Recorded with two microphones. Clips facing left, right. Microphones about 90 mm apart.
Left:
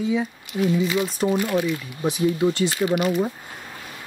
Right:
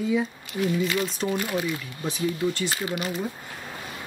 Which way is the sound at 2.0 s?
20° left (ahead or behind).